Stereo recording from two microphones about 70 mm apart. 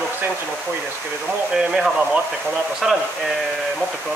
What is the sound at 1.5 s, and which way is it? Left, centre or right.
Speech, centre.